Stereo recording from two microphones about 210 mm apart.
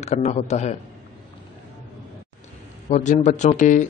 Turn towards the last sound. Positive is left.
turn(degrees=35)  # may be behind; listen again after turning